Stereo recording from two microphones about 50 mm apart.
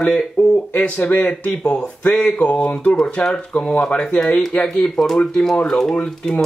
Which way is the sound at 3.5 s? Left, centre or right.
Centre.